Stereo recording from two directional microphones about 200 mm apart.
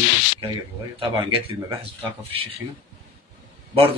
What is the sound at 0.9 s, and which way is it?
Speech, 25° right (ahead or behind).